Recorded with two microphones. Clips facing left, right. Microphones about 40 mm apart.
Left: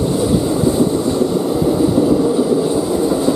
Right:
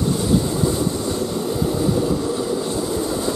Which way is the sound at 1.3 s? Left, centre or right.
Centre.